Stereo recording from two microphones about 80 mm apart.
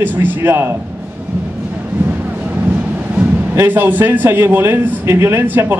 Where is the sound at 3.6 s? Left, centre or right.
Right.